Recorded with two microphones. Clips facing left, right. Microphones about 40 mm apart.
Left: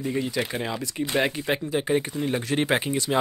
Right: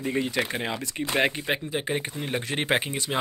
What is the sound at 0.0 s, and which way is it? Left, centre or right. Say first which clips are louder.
Speech: even; right.